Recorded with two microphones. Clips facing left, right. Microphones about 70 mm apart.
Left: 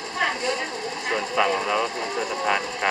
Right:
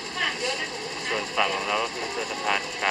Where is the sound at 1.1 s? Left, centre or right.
Centre.